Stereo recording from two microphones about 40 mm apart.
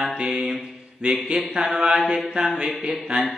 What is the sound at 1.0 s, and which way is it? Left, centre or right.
Speech, right.